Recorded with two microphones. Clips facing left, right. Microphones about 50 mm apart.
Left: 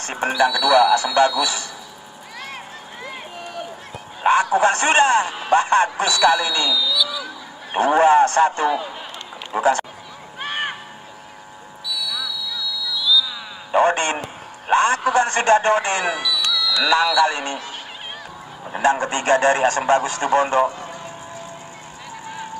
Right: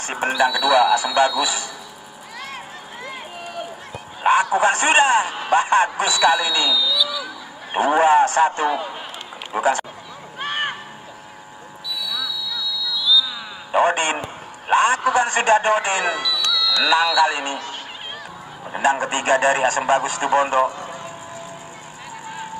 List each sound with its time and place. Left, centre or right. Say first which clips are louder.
0.0 s a man's voice: even; centre
3.9 s a man's voice: even; centre
6.7 s a sound: even; centre
7.7 s a man's voice: left 1 dB; centre
12.9 s a sound: even; centre
13.7 s a sound: left 1 dB; centre
15.0 s a man's voice: even; centre
16.1 s a man's voice: even; centre
18.8 s a man's voice: left 1 dB; centre